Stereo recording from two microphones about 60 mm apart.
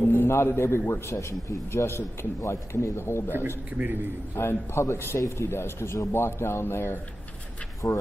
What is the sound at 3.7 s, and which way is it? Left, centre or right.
Speech, right.